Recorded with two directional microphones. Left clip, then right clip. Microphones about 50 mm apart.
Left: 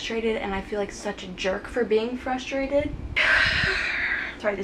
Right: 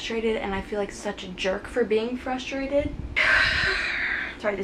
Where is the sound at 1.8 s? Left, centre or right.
Centre.